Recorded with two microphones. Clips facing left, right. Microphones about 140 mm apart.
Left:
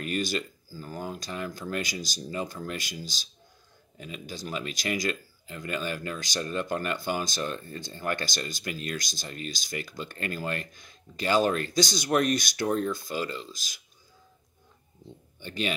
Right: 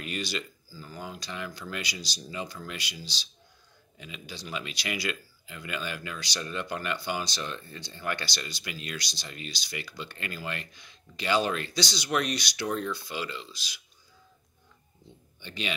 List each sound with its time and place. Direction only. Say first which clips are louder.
0.0 s speech: left 5 dB; 45° left (ahead or behind)
15.4 s speech: left 5 dB; 45° left (ahead or behind)